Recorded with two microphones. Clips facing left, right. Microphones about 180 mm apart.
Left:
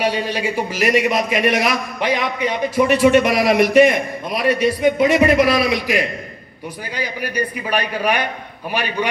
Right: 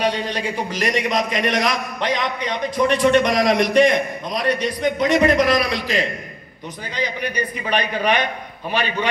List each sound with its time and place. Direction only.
0.0 s a man's voice: 5° left (ahead or behind)